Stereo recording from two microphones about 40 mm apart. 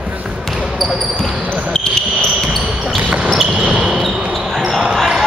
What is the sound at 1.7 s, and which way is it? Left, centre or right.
Basketball bounce, centre.